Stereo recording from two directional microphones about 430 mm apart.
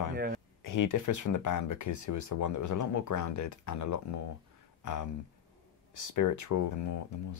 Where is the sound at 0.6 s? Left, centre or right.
Left.